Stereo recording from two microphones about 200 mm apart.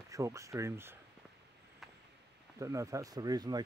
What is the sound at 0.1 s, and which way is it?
Speech, 15° right (ahead or behind).